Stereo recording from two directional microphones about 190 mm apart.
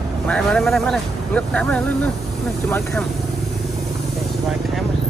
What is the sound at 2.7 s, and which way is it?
Speech, 15° left (ahead or behind).